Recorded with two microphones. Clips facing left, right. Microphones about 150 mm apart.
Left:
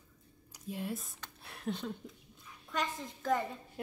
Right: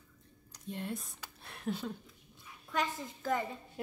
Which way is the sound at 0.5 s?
5° left (ahead or behind).